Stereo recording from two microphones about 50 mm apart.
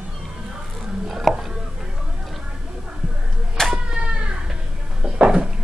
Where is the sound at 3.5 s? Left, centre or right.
Centre.